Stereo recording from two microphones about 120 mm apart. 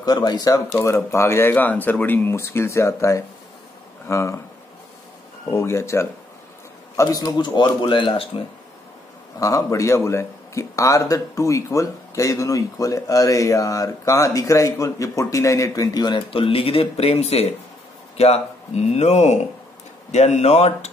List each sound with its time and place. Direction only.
0.0 s a man's voice: 35° left (ahead or behind)
0.7 s a man's voice: 20° left (ahead or behind)
5.5 s a man's voice: 25° left (ahead or behind); by 8.3 s 45° left (ahead or behind)
9.4 s a man's voice: 30° left (ahead or behind); by 20.9 s 60° left (ahead or behind)